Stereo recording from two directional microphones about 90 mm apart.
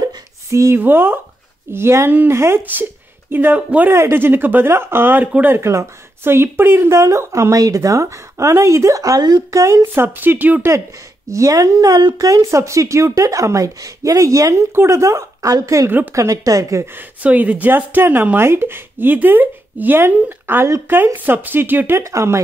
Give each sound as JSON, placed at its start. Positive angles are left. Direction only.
{"t": 0.5, "sound": "speech", "side_deg": -35}
{"t": 0.7, "sound": "a woman's voice", "side_deg": -25}
{"t": 5.6, "sound": "a woman's voice", "side_deg": -30}
{"t": 11.2, "sound": "speech", "side_deg": -35}
{"t": 12.3, "sound": "speech", "side_deg": -35}
{"t": 15.9, "sound": "a woman's voice", "side_deg": -20}
{"t": 16.2, "sound": "speech", "side_deg": -40}
{"t": 16.8, "sound": "a woman's voice", "side_deg": -20}